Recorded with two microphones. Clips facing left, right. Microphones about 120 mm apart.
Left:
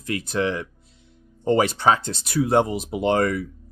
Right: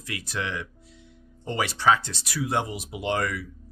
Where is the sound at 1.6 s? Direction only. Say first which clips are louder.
Right 1 dB; 25° left (ahead or behind).